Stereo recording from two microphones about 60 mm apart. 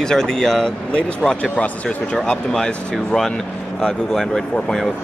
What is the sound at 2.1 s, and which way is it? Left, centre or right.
Speech, centre.